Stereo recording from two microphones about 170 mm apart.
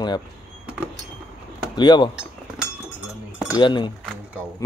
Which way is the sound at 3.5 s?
25° left (ahead or behind).